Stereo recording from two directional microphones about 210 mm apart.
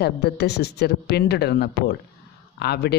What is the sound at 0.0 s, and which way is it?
A man's voice, 50° left (ahead or behind).